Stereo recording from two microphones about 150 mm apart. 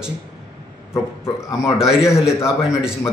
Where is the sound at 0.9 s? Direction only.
15° left (ahead or behind).